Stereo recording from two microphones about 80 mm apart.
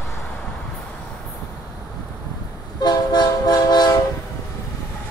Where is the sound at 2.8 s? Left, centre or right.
Left.